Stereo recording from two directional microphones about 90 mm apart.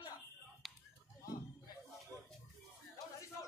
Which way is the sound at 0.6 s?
Centre (ahead or behind).